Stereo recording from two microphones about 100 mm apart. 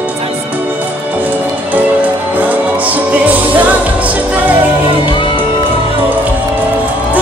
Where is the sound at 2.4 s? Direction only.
15° right (ahead or behind).